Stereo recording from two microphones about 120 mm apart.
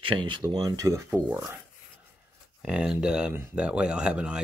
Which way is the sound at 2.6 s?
5° right (ahead or behind).